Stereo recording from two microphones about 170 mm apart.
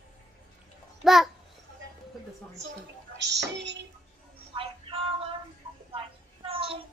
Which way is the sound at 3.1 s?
90° right.